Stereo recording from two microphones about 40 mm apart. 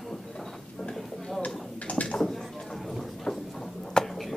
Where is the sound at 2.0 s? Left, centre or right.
Centre.